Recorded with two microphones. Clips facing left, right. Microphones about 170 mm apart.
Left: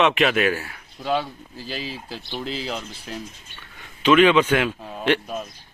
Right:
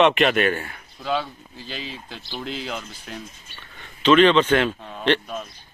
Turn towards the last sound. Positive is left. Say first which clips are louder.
# even
turn(degrees=10)  # may be behind; listen again after turning